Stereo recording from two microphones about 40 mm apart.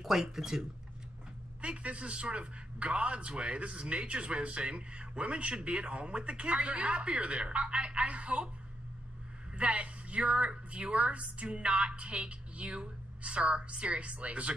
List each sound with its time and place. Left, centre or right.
0.0 s speech: centre
1.6 s a man's voice: right
9.6 s a man's voice: right